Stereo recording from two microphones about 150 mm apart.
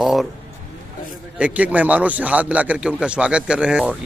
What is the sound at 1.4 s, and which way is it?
A man's voice, 10° right (ahead or behind).